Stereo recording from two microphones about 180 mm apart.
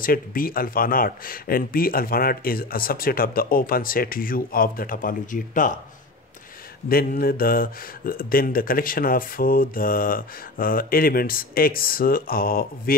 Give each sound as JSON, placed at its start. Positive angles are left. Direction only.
{"t": 0.0, "sound": "speech", "side_deg": 50}
{"t": 6.9, "sound": "speech", "side_deg": 55}